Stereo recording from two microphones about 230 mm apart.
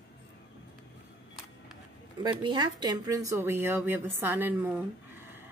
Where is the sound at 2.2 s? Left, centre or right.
Centre.